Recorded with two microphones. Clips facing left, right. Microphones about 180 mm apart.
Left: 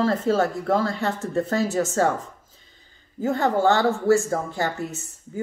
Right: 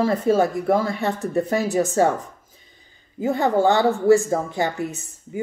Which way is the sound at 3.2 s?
15° right (ahead or behind).